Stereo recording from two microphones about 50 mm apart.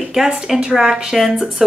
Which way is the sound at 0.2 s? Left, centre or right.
Centre.